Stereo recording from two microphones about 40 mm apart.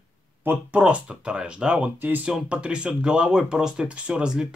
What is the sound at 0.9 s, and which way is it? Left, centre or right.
Speech, right.